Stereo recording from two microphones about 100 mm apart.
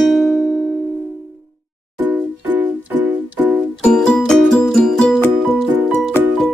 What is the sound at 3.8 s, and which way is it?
Music, 10° left (ahead or behind).